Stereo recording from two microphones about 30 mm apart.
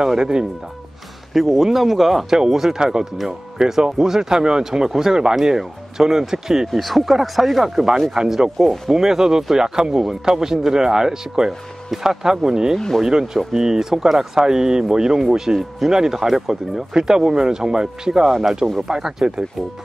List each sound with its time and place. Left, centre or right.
0.2 s speech: right
1.3 s speech: centre
2.2 s speech: centre
6.7 s speech: centre
7.6 s speech: centre
8.9 s speech: centre
16.9 s speech: right
18.2 s speech: centre